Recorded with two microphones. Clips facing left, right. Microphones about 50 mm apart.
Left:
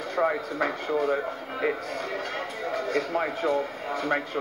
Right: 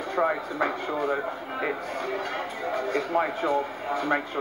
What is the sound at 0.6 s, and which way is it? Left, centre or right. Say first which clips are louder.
Speech: left 1 dB; right.